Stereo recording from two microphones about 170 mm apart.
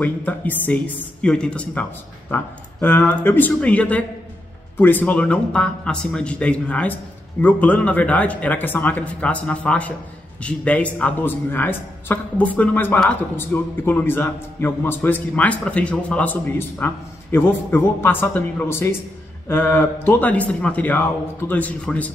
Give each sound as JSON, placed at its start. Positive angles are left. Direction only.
{"t": 0.0, "sound": "a man's voice", "side_deg": 10}